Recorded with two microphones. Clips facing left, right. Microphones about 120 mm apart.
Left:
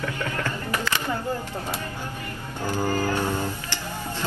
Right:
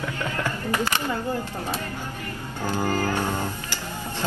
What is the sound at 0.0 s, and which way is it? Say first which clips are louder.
Music: even; 15° right (ahead or behind).